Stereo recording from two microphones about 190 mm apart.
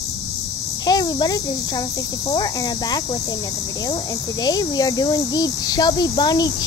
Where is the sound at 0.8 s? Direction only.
20° left (ahead or behind).